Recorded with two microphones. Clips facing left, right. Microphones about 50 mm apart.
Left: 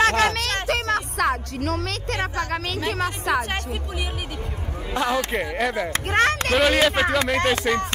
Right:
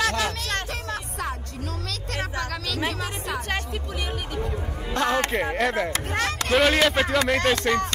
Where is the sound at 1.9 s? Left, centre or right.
Left.